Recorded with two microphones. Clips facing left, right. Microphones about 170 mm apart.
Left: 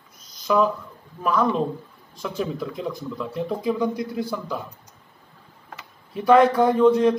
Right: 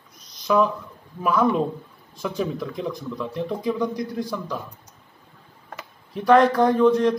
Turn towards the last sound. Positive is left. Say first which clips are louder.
# left 1 dB
turn(degrees=5)  # may be behind; listen again after turning